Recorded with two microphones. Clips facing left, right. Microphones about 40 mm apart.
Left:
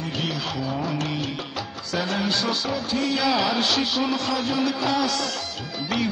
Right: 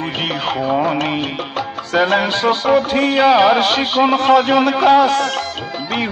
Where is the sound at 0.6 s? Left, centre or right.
Right.